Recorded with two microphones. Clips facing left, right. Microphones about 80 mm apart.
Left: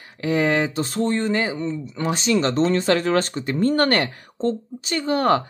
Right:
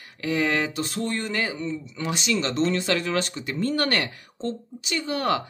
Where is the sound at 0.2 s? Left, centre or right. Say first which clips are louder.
Left 4 dB; left.